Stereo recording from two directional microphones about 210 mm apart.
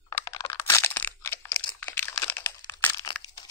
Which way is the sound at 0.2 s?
20° left (ahead or behind).